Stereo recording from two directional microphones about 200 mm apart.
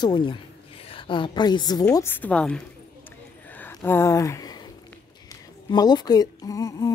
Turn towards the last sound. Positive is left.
turn(degrees=20)  # may be behind; listen again after turning